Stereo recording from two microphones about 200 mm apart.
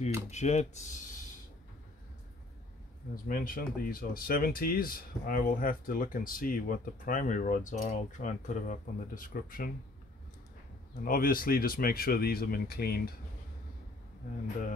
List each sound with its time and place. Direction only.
0.3 s speech: 35° left (ahead or behind)
3.3 s speech: 45° left (ahead or behind)
11.1 s speech: 45° left (ahead or behind)